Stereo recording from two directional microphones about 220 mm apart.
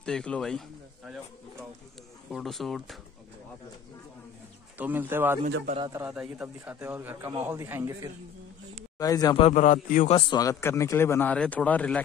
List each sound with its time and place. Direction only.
0.0 s a man's voice: 5° left (ahead or behind)
2.2 s speech: centre (ahead or behind)
4.7 s a man's voice: 10° right (ahead or behind)
8.9 s a man's voice: 15° left (ahead or behind)
9.5 s a man's voice: 35° left (ahead or behind)
10.1 s a man's voice: 15° left (ahead or behind)